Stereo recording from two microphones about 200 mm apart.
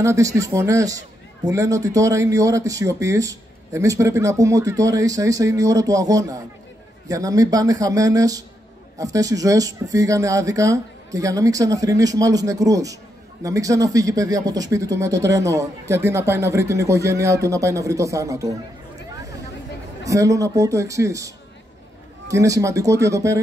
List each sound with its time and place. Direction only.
0.0 s a man's voice: 15° right (ahead or behind)
20.1 s a man's voice: 15° right (ahead or behind)
22.3 s a man's voice: 15° right (ahead or behind)